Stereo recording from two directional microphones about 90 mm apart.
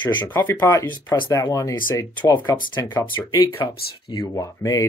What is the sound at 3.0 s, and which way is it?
Speech, 45° left (ahead or behind).